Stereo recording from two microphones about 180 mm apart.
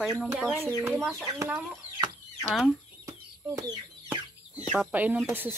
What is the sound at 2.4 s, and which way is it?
Speech, centre (ahead or behind).